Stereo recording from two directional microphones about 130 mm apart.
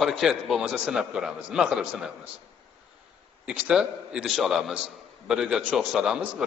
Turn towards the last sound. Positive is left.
turn(degrees=-5)  # may be behind; listen again after turning